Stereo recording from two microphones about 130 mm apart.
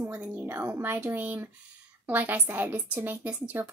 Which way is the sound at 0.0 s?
15° right (ahead or behind).